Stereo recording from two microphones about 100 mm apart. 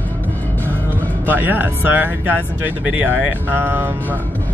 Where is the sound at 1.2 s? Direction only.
20° right (ahead or behind).